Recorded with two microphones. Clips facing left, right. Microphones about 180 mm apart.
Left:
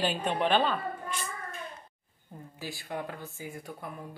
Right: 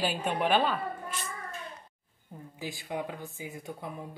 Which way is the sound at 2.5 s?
15° right (ahead or behind).